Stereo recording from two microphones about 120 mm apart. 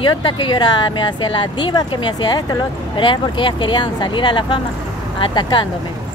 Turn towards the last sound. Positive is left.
turn(degrees=40)  # may be behind; listen again after turning